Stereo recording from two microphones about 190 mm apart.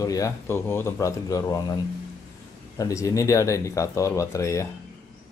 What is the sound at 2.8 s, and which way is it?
A man's voice, 15° left (ahead or behind).